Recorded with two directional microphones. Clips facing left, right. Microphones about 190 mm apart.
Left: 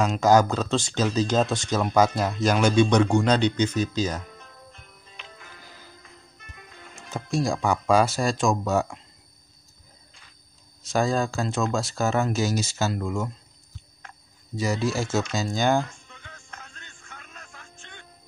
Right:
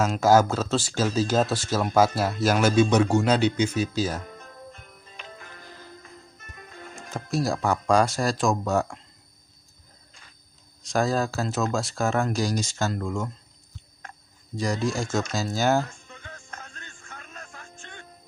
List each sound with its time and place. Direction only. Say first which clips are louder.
0.0 s speech: even; 5° right (ahead or behind)
6.5 s music: right 5 dB; 45° right (ahead or behind)
7.2 s speech: left 1 dB; centre (ahead or behind)
10.8 s speech: even; centre (ahead or behind)
14.5 s speech: left 1 dB; 5° left (ahead or behind)
16.1 s music: right 4 dB; 45° right (ahead or behind)